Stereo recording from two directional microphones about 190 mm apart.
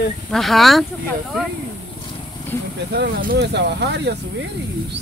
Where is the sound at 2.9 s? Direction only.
55° right (ahead or behind).